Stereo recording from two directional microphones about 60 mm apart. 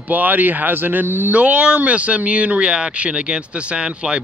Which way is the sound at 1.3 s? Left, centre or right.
Right.